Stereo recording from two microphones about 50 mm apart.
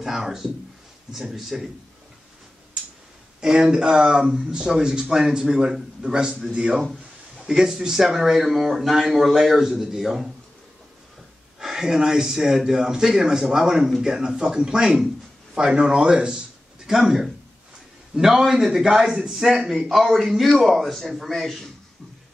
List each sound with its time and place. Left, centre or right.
0.0 s speech: centre
3.3 s speech: centre
11.6 s a man's voice: centre
19.3 s a man's voice: centre